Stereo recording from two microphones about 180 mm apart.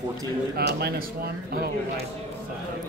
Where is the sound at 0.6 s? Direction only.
60° right (ahead or behind).